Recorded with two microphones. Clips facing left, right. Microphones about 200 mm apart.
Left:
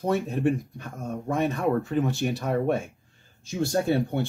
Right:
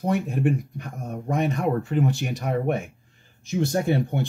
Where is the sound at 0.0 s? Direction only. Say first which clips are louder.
Right 1 dB; 15° right (ahead or behind).